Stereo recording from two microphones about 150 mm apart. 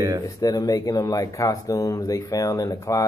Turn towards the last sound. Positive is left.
turn(degrees=20)  # may be behind; listen again after turning